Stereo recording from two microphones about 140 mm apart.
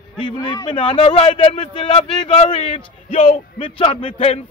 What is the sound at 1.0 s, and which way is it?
Speech, 55° left (ahead or behind).